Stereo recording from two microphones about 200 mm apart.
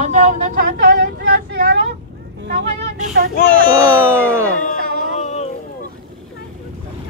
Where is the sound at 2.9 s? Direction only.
40° right (ahead or behind).